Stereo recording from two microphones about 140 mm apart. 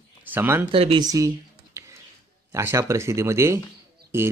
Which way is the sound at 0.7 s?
40° right (ahead or behind).